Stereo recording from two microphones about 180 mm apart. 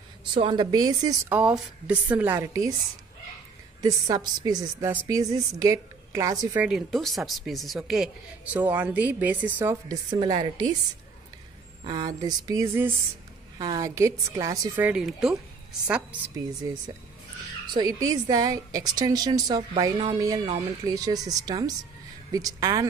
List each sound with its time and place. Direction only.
0.3 s a woman's voice: 30° right (ahead or behind)
1.3 s speech: 5° right (ahead or behind)
3.8 s a woman's voice: 20° right (ahead or behind)
6.6 s a woman's voice: centre (ahead or behind); by 10.7 s 20° right (ahead or behind)
11.8 s a woman's voice: 25° right (ahead or behind)
14.9 s a woman's voice: 5° right (ahead or behind)
17.7 s a woman's voice: 20° right (ahead or behind)